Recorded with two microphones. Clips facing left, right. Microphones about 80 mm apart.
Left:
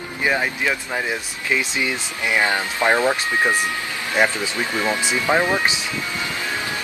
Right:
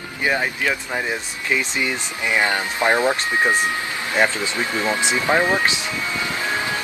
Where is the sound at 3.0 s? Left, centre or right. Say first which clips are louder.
Even; centre.